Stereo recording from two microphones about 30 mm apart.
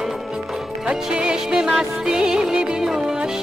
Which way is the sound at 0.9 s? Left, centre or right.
Right.